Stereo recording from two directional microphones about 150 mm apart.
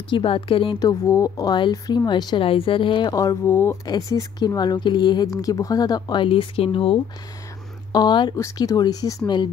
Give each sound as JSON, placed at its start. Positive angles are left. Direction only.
{"t": 0.1, "sound": "speech", "side_deg": 35}
{"t": 3.4, "sound": "speech", "side_deg": 15}
{"t": 3.8, "sound": "speech", "side_deg": 25}